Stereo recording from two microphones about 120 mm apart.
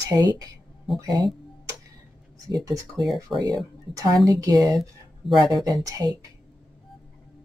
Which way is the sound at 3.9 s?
30° right (ahead or behind).